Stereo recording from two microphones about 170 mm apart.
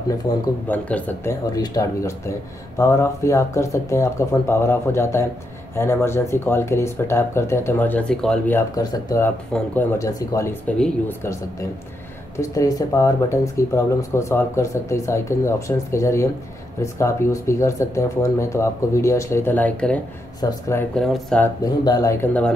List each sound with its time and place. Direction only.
0.3 s speech: 20° left (ahead or behind)
0.7 s speech: 10° left (ahead or behind)
1.5 s speech: 20° left (ahead or behind)
9.5 s speech: 5° left (ahead or behind)
9.9 s speech: 20° left (ahead or behind)
12.4 s speech: 20° left (ahead or behind)
20.3 s speech: 20° left (ahead or behind)
20.9 s speech: 5° left (ahead or behind)
21.8 s speech: 20° left (ahead or behind)